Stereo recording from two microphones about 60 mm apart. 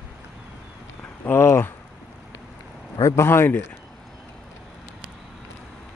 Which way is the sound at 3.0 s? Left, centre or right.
Left.